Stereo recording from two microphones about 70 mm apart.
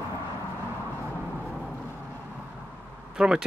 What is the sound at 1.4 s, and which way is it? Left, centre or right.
Vehicle, centre.